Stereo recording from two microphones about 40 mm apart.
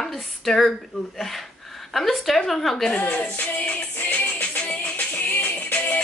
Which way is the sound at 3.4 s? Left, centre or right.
Left.